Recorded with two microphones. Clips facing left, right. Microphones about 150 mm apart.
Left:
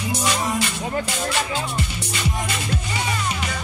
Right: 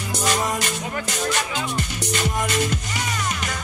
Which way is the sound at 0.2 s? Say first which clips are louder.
Right 2 dB; 45° right (ahead or behind).